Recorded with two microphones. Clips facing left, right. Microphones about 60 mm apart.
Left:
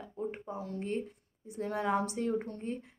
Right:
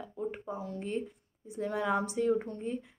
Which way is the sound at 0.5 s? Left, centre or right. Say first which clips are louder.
Left 2 dB; left.